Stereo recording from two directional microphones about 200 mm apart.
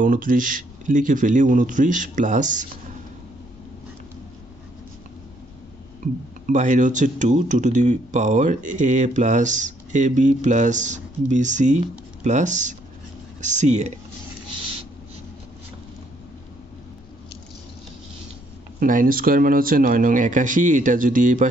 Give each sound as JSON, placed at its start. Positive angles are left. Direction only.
{"t": 0.0, "sound": "speech", "side_deg": -45}
{"t": 6.4, "sound": "speech", "side_deg": -40}
{"t": 18.8, "sound": "speech", "side_deg": -45}